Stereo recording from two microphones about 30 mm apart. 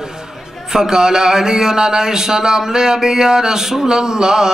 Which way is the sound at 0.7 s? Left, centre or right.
Centre.